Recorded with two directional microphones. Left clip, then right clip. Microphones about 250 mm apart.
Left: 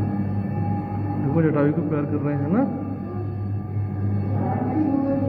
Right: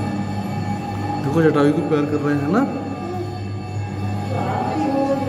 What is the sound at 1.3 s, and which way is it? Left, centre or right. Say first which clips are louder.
A man's voice: right 5 dB; centre.